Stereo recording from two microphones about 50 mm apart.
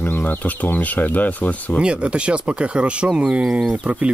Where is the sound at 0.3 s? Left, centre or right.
Left.